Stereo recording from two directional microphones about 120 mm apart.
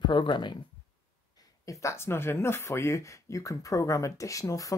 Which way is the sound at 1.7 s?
25° left (ahead or behind).